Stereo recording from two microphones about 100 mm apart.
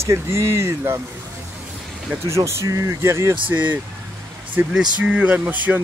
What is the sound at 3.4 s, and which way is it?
Speech, 15° right (ahead or behind).